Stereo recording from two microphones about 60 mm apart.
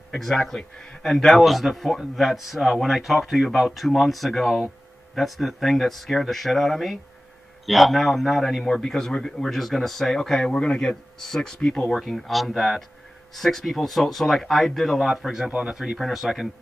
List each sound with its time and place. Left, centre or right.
0.1 s a man's voice: centre
12.0 s a man's voice: centre